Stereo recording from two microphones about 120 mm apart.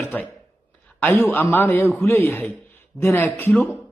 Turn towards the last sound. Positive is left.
turn(degrees=20)  # may be behind; listen again after turning